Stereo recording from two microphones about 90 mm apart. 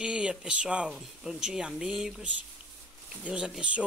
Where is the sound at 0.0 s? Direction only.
10° right (ahead or behind).